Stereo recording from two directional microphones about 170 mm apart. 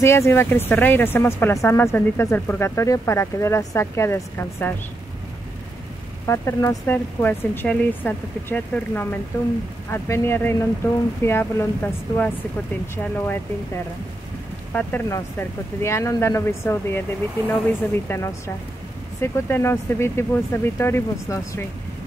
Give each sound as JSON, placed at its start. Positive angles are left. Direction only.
{"t": 0.0, "sound": "speech", "side_deg": 15}
{"t": 6.2, "sound": "speech", "side_deg": 15}
{"t": 14.7, "sound": "speech", "side_deg": 10}